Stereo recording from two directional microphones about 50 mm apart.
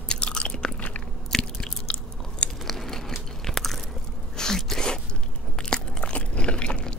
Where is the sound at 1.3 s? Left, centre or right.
Centre.